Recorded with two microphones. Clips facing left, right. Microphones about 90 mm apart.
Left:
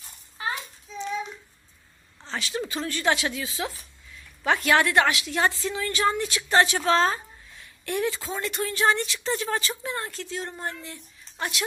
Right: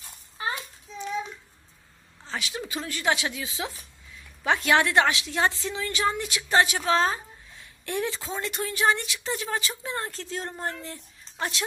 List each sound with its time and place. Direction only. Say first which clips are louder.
2.2 s a woman's voice: left 3 dB; 10° right (ahead or behind)
7.8 s speech: left 2 dB; 25° right (ahead or behind)
9.8 s a woman's voice: even; 30° right (ahead or behind)
11.3 s speech: even; 25° right (ahead or behind)